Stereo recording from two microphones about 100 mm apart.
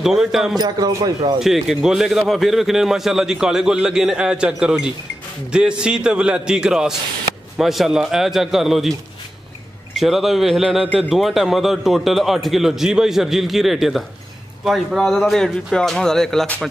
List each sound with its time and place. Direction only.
0.0 s a man's voice: 5° right (ahead or behind)
0.6 s speech: 40° right (ahead or behind)
1.4 s a man's voice: 5° right (ahead or behind)
9.9 s a man's voice: centre (ahead or behind)